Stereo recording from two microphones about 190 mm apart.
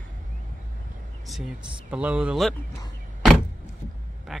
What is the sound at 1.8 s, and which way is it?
Speech, 5° right (ahead or behind).